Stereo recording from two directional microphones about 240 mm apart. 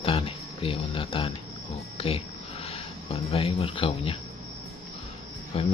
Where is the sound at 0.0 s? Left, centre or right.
Left.